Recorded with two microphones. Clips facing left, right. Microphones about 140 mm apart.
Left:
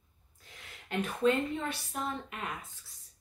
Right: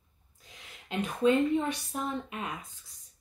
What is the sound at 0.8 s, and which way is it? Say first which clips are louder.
A woman's voice: right 2 dB; 15° right (ahead or behind).